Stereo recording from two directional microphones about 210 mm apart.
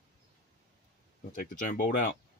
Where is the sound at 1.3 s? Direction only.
40° left (ahead or behind).